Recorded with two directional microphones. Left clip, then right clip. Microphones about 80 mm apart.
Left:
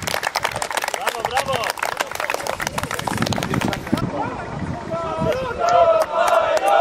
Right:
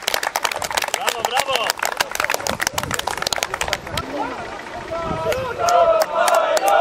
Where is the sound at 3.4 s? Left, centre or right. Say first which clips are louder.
Right 1 dB; right.